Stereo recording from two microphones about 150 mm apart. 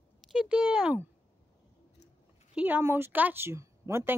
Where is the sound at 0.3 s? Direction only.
5° right (ahead or behind).